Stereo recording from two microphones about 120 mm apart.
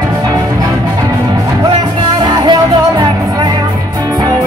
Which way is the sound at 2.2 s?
40° right (ahead or behind).